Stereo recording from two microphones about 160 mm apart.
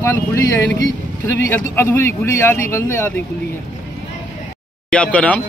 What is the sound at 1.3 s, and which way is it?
Speech, 15° left (ahead or behind).